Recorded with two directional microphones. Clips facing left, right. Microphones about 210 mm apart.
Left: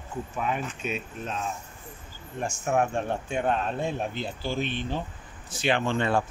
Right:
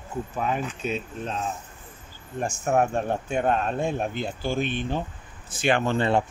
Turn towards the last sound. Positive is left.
turn(degrees=-45)  # may be behind; listen again after turning